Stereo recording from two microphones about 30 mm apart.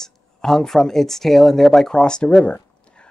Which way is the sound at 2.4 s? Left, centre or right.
Left.